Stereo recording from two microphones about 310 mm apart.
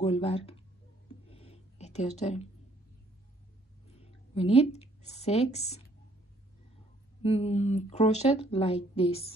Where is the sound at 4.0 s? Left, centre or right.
Centre.